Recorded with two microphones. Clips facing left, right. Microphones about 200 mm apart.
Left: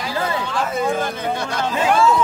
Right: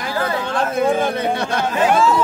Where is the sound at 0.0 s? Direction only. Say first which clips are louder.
Right 2 dB; 55° right (ahead or behind).